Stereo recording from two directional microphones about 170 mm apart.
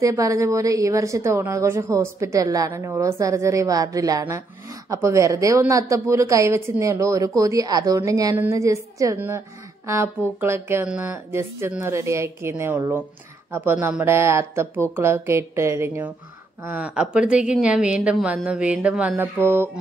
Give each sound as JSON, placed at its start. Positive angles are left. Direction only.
{"t": 0.0, "sound": "a woman's voice", "side_deg": -20}
{"t": 10.4, "sound": "a woman's voice", "side_deg": -15}